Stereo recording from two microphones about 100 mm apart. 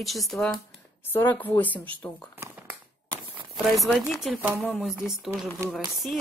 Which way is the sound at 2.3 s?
20° right (ahead or behind).